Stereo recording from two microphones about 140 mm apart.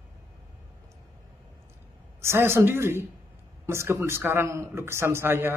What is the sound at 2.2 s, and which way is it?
Speech, 20° right (ahead or behind).